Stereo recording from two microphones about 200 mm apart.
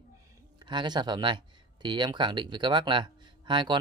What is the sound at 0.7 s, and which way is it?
Speech, 20° right (ahead or behind).